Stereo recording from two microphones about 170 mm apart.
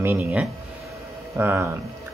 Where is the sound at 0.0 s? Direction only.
10° right (ahead or behind).